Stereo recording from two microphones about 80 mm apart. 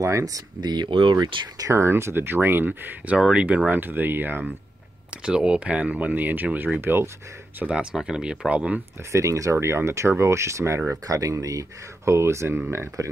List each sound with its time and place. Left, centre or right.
0.0 s speech: right
0.6 s speech: right
1.6 s speech: right
3.2 s speech: centre
5.1 s speech: centre
6.8 s speech: right
7.7 s speech: centre
9.1 s speech: right